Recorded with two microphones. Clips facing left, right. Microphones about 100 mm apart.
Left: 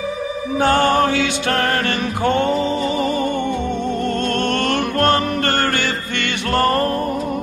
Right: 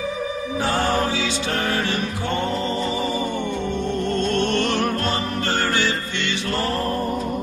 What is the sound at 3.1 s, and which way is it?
Music, 55° left (ahead or behind).